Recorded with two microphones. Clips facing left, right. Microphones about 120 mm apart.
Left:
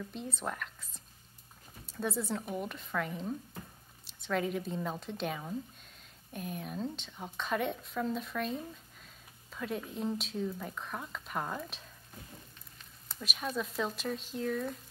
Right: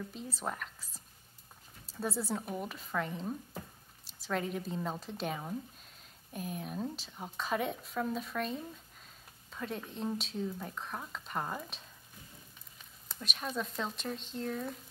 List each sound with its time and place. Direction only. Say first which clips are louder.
0.1 s speech: left 1 dB; centre (ahead or behind)